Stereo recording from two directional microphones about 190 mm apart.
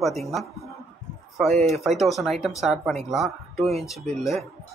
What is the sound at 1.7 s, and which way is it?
Speech, centre (ahead or behind).